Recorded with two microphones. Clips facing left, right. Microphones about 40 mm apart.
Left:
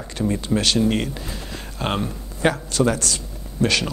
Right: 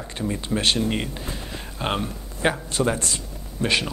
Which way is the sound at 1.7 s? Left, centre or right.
Centre.